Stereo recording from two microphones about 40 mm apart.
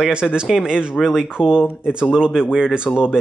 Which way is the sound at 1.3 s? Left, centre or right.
Centre.